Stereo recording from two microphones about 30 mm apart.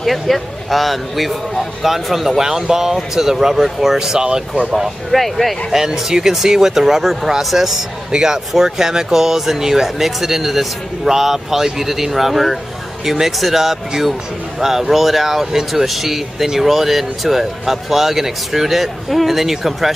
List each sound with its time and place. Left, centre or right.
0.0 s speech: centre; by 4.4 s right
5.1 s speech: centre
5.7 s speech: centre